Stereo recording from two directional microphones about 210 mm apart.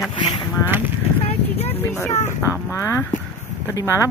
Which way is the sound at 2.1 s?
35° left (ahead or behind).